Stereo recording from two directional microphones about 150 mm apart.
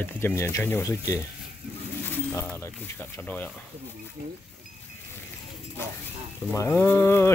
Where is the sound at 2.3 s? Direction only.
15° left (ahead or behind).